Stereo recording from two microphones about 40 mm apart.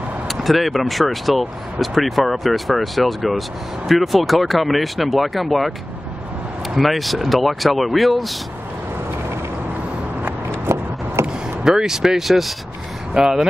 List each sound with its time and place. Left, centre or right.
0.3 s speech: centre
6.8 s speech: centre
11.2 s vehicle: right
11.6 s speech: centre
13.1 s speech: centre